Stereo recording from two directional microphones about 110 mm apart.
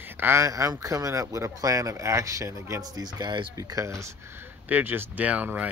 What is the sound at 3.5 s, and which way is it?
Speech, 30° right (ahead or behind).